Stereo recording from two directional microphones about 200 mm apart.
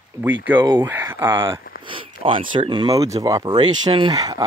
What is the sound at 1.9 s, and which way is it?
Speech, 25° right (ahead or behind).